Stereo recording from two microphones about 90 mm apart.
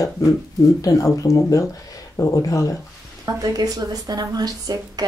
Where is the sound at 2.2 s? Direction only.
35° left (ahead or behind).